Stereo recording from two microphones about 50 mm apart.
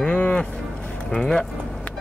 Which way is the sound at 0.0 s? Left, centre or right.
Left.